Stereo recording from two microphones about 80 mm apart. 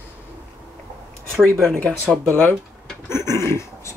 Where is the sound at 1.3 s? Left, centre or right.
Centre.